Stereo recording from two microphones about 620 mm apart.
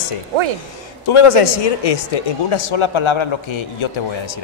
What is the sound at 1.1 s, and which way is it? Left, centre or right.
Speech, left.